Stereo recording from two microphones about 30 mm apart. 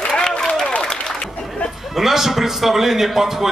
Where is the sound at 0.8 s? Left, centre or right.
Left.